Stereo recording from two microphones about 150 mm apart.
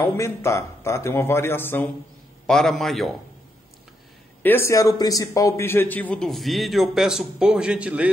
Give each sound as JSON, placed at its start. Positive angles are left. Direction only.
{"t": 0.0, "sound": "speech", "side_deg": 20}
{"t": 2.4, "sound": "a man's voice", "side_deg": 5}
{"t": 4.4, "sound": "a man's voice", "side_deg": 15}